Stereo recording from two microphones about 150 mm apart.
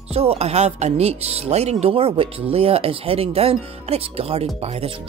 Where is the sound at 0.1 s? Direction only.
40° right (ahead or behind).